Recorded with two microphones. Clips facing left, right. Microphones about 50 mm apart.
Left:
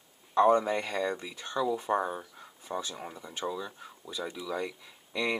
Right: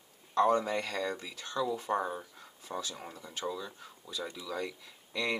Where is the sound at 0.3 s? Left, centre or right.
Centre.